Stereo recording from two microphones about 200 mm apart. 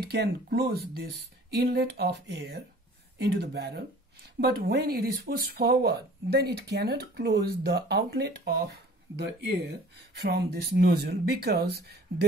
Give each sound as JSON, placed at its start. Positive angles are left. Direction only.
{"t": 0.0, "sound": "speech", "side_deg": -55}